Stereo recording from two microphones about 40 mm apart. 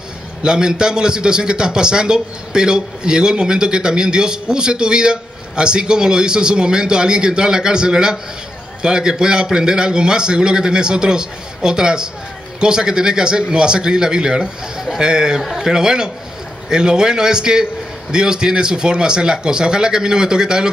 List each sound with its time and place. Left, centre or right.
0.4 s a man's voice: centre